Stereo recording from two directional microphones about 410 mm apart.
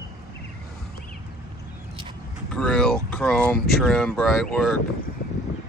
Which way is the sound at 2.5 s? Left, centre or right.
Centre.